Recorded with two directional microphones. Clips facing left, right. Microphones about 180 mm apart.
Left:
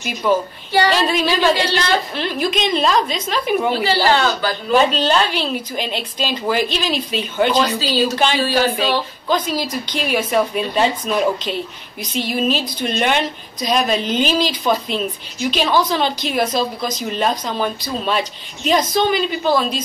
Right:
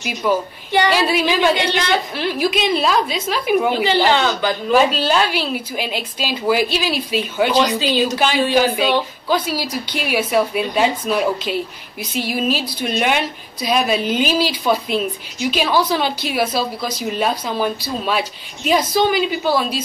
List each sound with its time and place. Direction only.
0.0 s a woman's voice: 5° right (ahead or behind)
4.0 s a woman's voice: 20° right (ahead or behind)
4.7 s a woman's voice: 5° right (ahead or behind)